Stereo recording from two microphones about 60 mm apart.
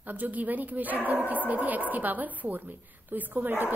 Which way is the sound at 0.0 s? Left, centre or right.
Right.